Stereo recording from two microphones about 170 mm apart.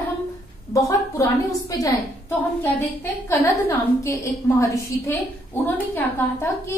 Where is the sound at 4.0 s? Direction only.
15° left (ahead or behind).